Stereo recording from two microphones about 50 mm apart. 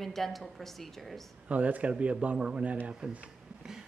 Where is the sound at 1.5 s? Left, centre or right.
Right.